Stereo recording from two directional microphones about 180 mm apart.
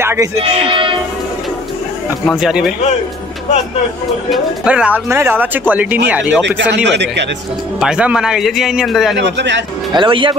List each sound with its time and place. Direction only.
0.0 s music: 15° right (ahead or behind)
0.4 s speech: 30° right (ahead or behind)
2.2 s speech: centre (ahead or behind)
4.3 s speech: 5° right (ahead or behind)
6.7 s a man's voice: 70° right (ahead or behind)
7.8 s speech: 5° right (ahead or behind)
9.1 s a man's voice: 75° right (ahead or behind)
9.9 s speech: 30° right (ahead or behind)